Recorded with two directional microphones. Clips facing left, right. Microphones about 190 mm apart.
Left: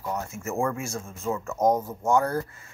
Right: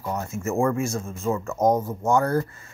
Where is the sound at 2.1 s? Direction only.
10° left (ahead or behind).